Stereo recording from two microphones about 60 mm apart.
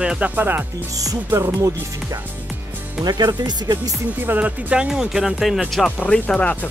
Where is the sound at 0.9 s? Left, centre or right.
Right.